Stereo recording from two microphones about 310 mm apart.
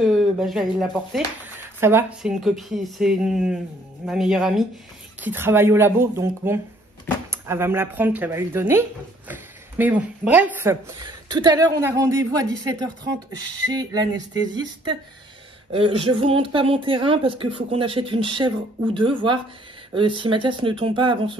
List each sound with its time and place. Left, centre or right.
0.0 s speech: centre
15.7 s speech: centre